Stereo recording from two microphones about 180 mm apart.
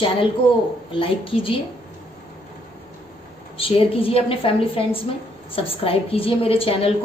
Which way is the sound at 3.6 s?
30° left (ahead or behind).